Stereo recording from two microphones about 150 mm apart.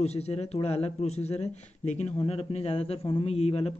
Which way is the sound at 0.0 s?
45° left (ahead or behind).